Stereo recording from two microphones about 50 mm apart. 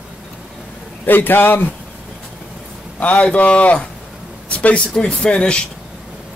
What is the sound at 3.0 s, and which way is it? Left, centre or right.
A man's voice, left.